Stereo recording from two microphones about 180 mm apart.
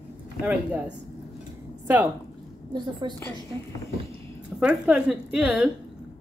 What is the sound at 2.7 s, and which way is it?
Speech, 25° right (ahead or behind).